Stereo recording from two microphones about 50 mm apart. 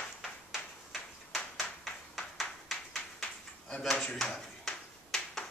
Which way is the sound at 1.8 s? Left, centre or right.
Centre.